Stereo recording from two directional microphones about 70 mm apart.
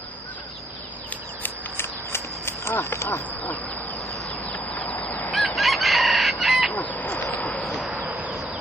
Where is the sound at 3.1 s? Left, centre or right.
Left.